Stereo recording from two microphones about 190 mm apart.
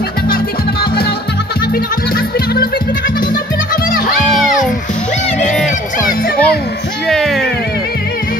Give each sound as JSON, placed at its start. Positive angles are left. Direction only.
{"t": 2.1, "sound": "music", "side_deg": 55}
{"t": 6.0, "sound": "music", "side_deg": 50}
{"t": 7.1, "sound": "music", "side_deg": 0}